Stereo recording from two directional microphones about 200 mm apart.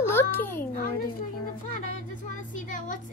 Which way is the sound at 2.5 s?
40° left (ahead or behind).